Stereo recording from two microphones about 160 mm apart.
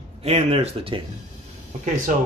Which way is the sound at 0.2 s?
40° right (ahead or behind).